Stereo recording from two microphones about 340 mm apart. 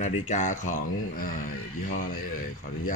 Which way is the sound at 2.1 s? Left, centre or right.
Left.